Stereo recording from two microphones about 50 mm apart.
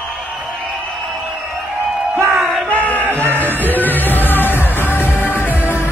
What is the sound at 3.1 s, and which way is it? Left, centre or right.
Music, right.